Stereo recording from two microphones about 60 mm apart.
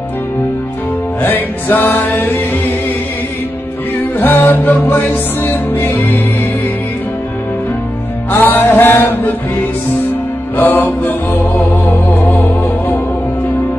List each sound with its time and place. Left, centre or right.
1.2 s music: left
4.2 s music: left
8.3 s music: left
10.6 s music: left